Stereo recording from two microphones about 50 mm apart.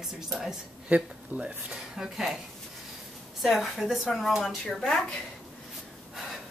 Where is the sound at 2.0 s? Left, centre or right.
Centre.